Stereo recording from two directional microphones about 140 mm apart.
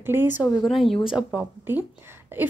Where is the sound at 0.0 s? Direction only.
15° right (ahead or behind).